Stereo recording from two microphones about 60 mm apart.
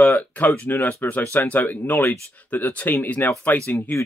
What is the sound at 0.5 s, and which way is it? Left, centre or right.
Speech, left.